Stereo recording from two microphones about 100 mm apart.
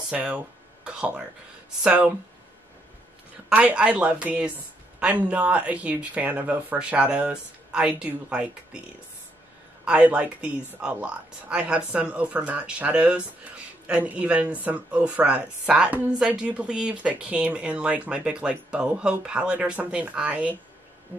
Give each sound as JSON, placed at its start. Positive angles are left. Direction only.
{"t": 0.1, "sound": "speech", "side_deg": -10}
{"t": 0.8, "sound": "a sound", "side_deg": -10}
{"t": 1.8, "sound": "speech", "side_deg": -15}
{"t": 3.4, "sound": "speech", "side_deg": -10}
{"t": 9.8, "sound": "speech", "side_deg": -10}
{"t": 21.1, "sound": "insect", "side_deg": -20}